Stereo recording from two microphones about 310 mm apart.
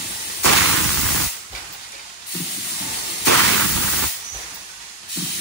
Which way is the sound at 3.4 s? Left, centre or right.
Right.